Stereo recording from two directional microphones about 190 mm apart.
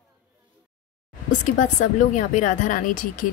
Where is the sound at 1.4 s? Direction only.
40° left (ahead or behind).